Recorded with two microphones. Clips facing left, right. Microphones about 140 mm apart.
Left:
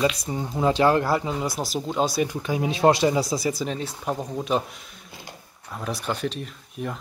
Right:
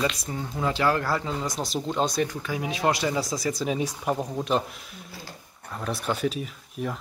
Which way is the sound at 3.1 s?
10° left (ahead or behind).